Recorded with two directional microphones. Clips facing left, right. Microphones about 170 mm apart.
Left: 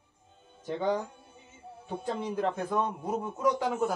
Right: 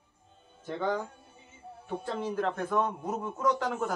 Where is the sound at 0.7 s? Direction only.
20° left (ahead or behind).